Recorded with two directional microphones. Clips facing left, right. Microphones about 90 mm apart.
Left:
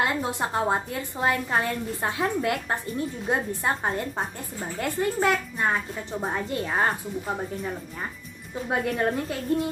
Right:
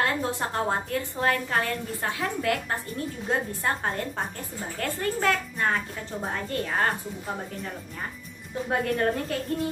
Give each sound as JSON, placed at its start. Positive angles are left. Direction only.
{"t": 0.0, "sound": "a woman's voice", "side_deg": 15}
{"t": 8.6, "sound": "a woman's voice", "side_deg": 10}